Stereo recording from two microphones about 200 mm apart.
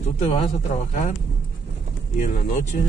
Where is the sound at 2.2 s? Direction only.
40° left (ahead or behind).